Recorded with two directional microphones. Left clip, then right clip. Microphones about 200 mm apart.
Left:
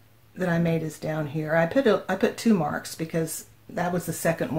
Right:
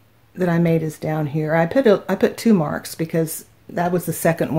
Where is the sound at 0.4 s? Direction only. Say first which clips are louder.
Right 7 dB; 40° right (ahead or behind).